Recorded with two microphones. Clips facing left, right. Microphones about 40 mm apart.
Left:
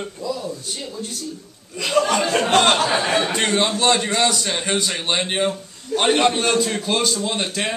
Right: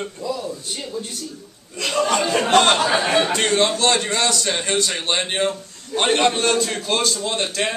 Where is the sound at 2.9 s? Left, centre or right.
Right.